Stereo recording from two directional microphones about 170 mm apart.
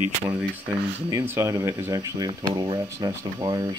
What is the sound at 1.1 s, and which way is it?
Speech, 15° right (ahead or behind).